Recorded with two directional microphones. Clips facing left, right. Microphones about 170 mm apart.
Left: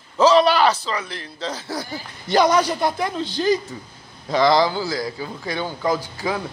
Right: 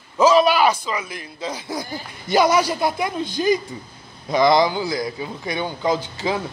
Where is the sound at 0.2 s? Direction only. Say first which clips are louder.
Even; 10° right (ahead or behind).